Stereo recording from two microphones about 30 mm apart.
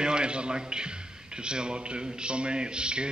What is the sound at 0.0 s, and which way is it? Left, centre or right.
A man's voice, right.